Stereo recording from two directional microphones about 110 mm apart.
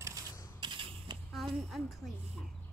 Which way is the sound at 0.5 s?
50° right (ahead or behind).